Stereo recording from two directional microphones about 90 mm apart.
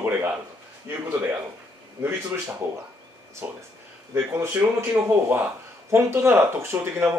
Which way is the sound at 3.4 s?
20° right (ahead or behind).